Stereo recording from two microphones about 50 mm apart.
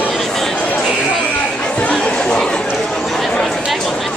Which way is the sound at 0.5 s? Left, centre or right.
Left.